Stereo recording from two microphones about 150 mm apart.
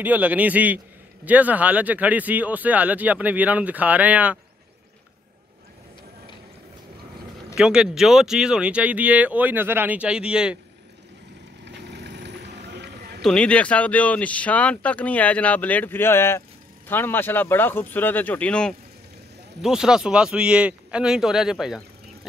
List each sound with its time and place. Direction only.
0.0 s speech: 10° right (ahead or behind)
7.5 s speech: 5° right (ahead or behind)
12.6 s clip-clop: 90° right
13.2 s speech: 5° left (ahead or behind)
19.6 s a man's voice: 5° right (ahead or behind)